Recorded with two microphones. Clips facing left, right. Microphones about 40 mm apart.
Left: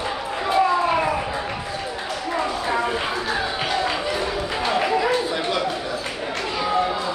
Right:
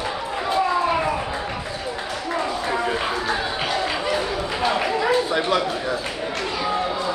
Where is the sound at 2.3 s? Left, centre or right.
Centre.